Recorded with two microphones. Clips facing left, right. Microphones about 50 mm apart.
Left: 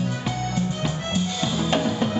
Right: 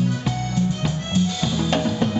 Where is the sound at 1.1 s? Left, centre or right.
Centre.